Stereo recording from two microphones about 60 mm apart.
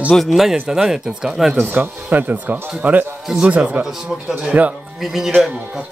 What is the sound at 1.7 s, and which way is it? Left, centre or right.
Speech, right.